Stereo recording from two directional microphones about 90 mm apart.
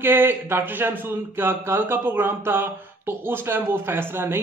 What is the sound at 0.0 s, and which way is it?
Speech, 25° right (ahead or behind).